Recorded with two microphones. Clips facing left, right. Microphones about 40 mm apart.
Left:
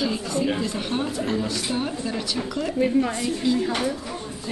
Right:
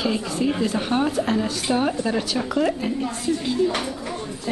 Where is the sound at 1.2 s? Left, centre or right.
Right.